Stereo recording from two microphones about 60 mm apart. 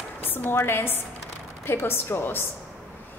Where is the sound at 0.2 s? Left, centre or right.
Left.